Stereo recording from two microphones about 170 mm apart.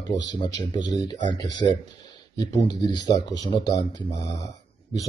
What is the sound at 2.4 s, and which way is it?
Speech, 25° left (ahead or behind).